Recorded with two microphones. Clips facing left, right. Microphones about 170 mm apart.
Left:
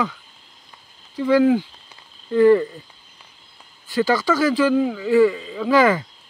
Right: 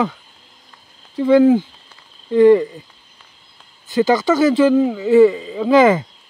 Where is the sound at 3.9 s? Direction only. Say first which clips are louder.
Right 4 dB; 20° right (ahead or behind).